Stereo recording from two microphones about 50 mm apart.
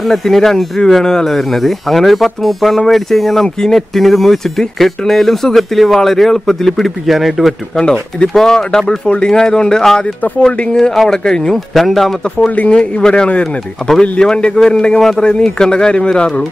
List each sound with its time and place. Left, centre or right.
0.0 s speech: centre
7.7 s speech: centre
10.9 s speech: centre
11.2 s speech: centre
11.5 s speech: centre
12.4 s speech: left